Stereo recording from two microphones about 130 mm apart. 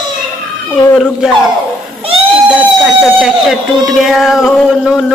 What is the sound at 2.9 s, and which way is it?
Music, centre (ahead or behind).